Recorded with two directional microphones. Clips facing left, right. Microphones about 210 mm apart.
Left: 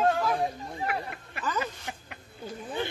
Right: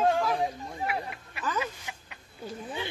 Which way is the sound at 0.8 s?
50° left (ahead or behind).